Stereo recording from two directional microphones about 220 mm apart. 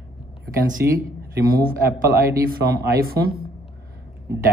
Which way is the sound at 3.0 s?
45° right (ahead or behind).